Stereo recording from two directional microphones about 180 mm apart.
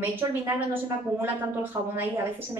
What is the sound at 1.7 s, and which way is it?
Speech, 20° right (ahead or behind).